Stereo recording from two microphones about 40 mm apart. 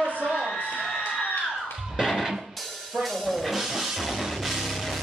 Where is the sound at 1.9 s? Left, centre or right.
Centre.